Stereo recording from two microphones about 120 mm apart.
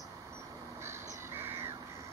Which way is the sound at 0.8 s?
20° right (ahead or behind).